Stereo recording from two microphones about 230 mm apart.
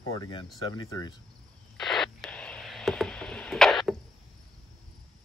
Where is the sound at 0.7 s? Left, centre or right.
Centre.